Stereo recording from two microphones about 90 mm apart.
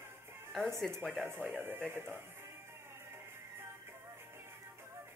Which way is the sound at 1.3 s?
20° right (ahead or behind).